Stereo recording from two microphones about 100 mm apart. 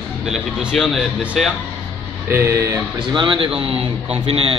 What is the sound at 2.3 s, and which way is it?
Speech, 30° right (ahead or behind).